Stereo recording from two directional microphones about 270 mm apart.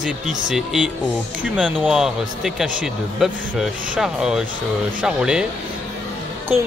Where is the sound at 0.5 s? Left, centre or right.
Centre.